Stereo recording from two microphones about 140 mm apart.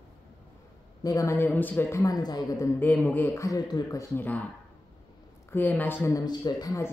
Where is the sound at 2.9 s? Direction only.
10° left (ahead or behind).